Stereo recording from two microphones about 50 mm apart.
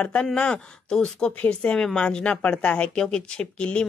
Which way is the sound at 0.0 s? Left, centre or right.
Left.